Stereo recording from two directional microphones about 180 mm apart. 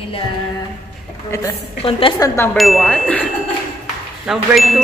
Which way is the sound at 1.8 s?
30° left (ahead or behind).